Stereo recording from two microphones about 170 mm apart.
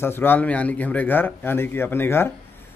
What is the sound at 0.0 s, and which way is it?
A man's voice, 15° left (ahead or behind).